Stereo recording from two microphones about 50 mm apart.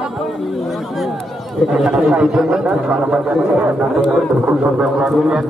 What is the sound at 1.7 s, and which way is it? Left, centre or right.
A man's voice, centre.